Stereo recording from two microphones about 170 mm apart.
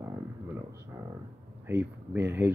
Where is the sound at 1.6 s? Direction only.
10° right (ahead or behind).